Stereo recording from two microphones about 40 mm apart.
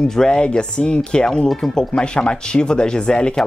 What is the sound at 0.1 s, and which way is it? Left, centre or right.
Speech, centre.